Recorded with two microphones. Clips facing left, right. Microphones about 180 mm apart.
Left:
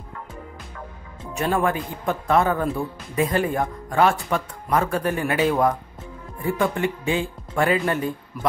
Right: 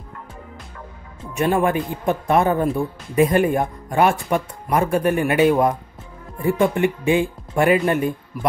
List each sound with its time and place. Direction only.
1.3 s speech: 15° right (ahead or behind)